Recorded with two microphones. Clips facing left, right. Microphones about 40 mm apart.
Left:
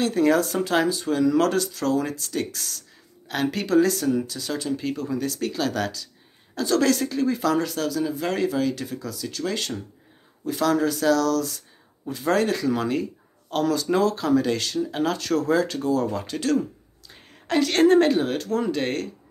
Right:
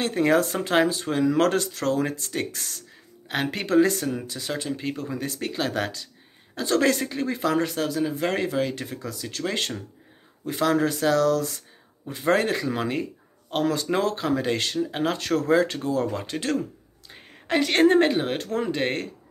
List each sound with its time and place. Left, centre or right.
0.0 s speech: right